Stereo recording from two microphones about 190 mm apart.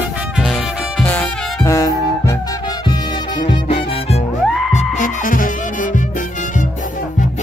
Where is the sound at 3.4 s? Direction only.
30° left (ahead or behind).